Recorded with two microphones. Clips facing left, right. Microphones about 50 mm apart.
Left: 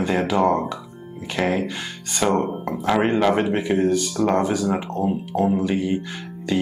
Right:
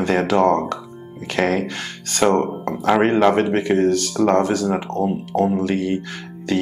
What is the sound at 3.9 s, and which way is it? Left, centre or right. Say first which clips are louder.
Speech: right 2 dB; right.